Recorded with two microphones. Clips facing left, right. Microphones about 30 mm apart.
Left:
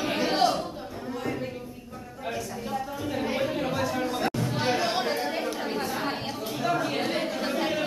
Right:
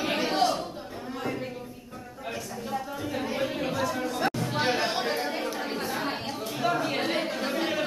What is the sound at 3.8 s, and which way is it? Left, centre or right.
Chatter, centre.